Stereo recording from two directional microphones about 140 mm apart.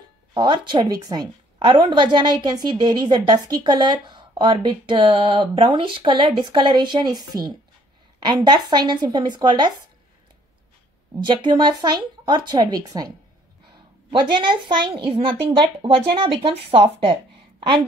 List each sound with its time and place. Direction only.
0.3 s a woman's voice: 35° right (ahead or behind)
11.2 s a woman's voice: 35° right (ahead or behind)
14.3 s a woman's voice: 35° right (ahead or behind)